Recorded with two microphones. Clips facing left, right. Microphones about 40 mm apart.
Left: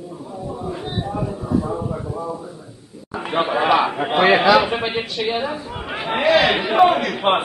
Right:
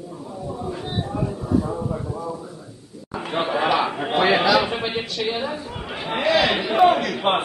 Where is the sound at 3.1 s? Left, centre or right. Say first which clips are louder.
Left 3 dB; centre.